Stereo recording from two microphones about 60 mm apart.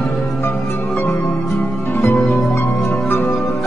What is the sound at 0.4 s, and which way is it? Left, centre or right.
Music, left.